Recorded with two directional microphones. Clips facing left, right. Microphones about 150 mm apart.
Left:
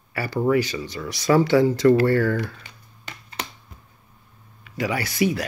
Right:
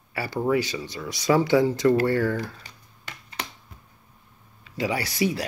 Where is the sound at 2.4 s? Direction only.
35° right (ahead or behind).